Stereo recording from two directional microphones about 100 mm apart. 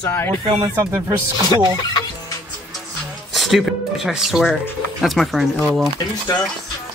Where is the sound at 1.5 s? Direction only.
45° left (ahead or behind).